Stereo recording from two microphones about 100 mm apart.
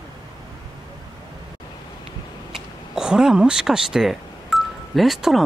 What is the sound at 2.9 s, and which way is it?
Speech, 5° right (ahead or behind).